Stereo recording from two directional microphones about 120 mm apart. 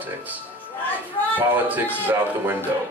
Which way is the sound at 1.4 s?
15° right (ahead or behind).